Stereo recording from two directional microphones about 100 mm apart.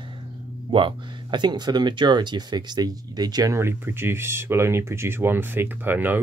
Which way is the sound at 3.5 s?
25° right (ahead or behind).